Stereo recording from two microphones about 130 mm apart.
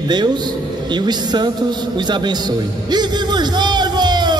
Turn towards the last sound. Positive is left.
turn(degrees=-35)  # may be behind; listen again after turning